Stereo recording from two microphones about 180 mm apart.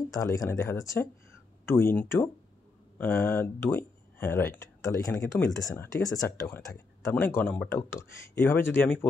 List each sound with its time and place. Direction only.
0.1 s speech: 20° left (ahead or behind)